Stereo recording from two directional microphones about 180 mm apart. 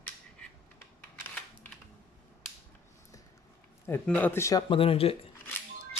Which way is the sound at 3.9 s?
10° left (ahead or behind).